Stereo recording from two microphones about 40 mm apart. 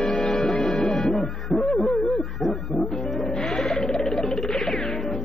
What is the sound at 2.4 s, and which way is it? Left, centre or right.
Music, centre.